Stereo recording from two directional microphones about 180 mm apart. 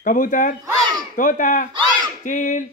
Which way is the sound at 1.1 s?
45° left (ahead or behind).